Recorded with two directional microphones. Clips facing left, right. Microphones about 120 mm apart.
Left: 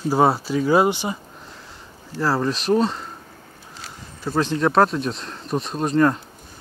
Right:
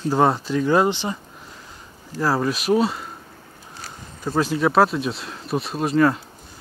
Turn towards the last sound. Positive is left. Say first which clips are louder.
# even
turn(degrees=-5)  # may be behind; listen again after turning